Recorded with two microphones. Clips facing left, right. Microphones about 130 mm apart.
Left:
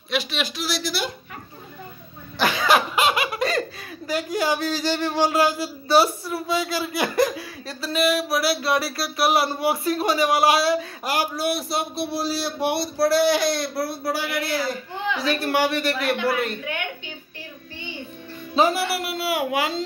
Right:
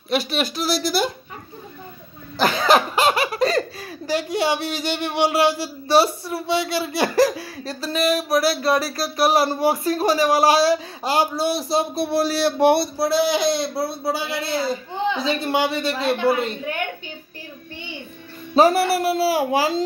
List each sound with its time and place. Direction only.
0.1 s speech: 45° right (ahead or behind)
2.4 s speech: 35° right (ahead or behind)
12.1 s speech: 65° right (ahead or behind)
12.6 s speech: 60° right (ahead or behind)
13.0 s speech: 20° right (ahead or behind)
18.5 s speech: 45° right (ahead or behind)